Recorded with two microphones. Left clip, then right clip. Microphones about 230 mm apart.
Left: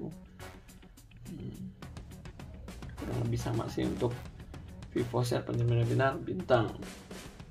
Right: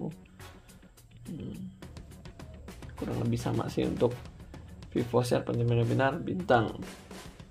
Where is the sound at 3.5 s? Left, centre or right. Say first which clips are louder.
Right 2 dB; right.